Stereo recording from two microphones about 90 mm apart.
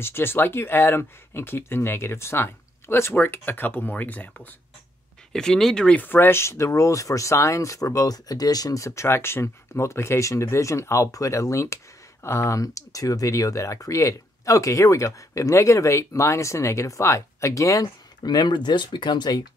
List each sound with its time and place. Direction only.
0.0 s speech: 25° left (ahead or behind)
5.3 s speech: 5° left (ahead or behind); by 17.8 s 35° left (ahead or behind)
18.2 s speech: 50° left (ahead or behind)